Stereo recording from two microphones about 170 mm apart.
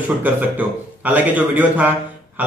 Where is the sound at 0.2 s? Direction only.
10° right (ahead or behind).